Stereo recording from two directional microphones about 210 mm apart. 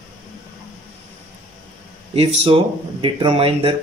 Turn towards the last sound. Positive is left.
turn(degrees=-25)  # may be behind; listen again after turning